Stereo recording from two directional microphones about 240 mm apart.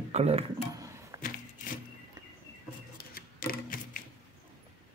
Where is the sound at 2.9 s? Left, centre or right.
Left.